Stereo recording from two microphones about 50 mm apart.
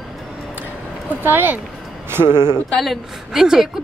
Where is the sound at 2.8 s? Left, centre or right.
Centre.